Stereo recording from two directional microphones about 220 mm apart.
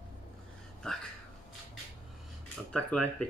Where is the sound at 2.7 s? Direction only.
5° left (ahead or behind).